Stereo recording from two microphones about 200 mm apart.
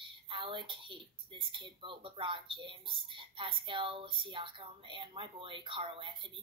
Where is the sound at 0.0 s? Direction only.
25° right (ahead or behind).